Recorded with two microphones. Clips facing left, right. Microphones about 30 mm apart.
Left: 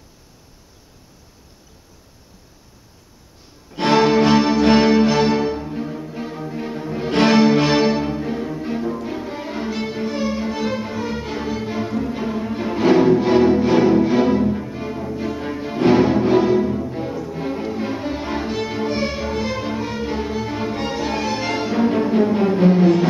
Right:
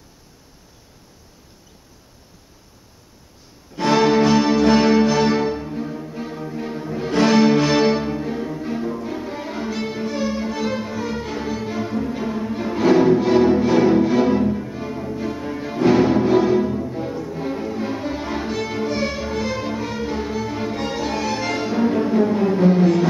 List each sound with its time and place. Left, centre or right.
3.9 s music: centre
5.2 s music: centre
7.1 s music: left
7.5 s music: centre